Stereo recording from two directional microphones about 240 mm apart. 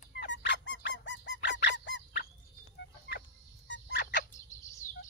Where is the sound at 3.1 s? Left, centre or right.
Left.